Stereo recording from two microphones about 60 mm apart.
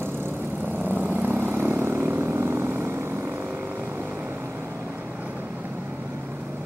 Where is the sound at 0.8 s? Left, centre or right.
Right.